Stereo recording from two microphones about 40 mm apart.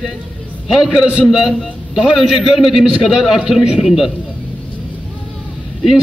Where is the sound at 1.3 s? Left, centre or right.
Centre.